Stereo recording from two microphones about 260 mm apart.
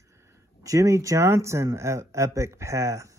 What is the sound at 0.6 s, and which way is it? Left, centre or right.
Speech, centre.